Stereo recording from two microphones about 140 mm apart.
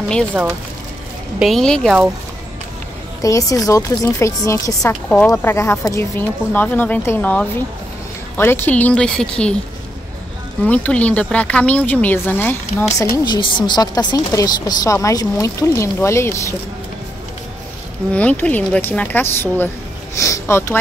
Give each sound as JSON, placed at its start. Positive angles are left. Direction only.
{"t": 0.3, "sound": "speech", "side_deg": -10}
{"t": 1.4, "sound": "speech", "side_deg": 0}
{"t": 3.2, "sound": "a woman's voice", "side_deg": 25}
{"t": 10.6, "sound": "speech", "side_deg": 10}
{"t": 13.1, "sound": "a woman's voice", "side_deg": 30}
{"t": 18.1, "sound": "speech", "side_deg": 10}